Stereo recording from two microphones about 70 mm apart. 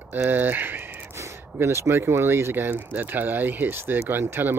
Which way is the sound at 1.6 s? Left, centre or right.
Right.